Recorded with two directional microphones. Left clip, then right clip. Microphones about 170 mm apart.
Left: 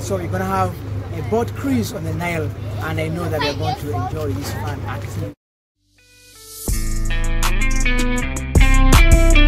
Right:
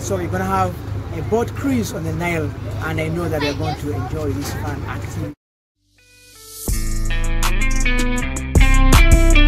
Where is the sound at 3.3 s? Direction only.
50° left (ahead or behind).